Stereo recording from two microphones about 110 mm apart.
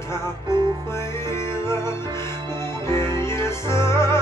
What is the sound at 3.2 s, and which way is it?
Music, 25° left (ahead or behind).